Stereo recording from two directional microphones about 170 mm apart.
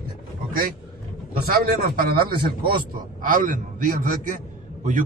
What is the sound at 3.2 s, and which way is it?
A man's voice, 50° right (ahead or behind).